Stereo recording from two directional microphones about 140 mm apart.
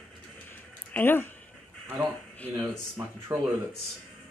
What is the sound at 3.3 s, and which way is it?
Speech, 25° right (ahead or behind).